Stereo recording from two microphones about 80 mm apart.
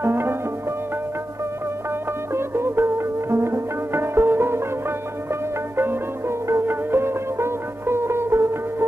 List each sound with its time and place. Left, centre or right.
0.0 s music: right
2.3 s music: right